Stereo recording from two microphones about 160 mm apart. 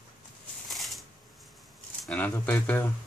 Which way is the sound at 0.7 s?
Centre (ahead or behind).